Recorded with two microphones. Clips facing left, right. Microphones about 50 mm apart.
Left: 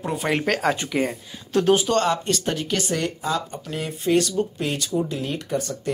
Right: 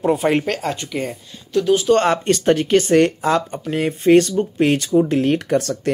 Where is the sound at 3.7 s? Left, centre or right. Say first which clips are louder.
Right 8 dB; right.